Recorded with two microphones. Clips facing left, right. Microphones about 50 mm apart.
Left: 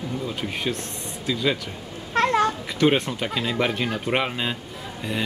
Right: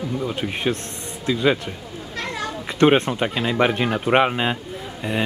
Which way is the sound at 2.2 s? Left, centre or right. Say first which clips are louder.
Left 9 dB; left.